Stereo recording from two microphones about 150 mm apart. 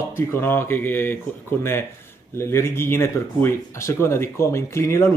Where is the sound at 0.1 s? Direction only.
15° left (ahead or behind).